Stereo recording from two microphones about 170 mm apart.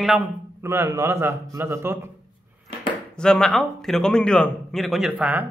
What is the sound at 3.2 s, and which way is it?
A man's voice, 5° left (ahead or behind).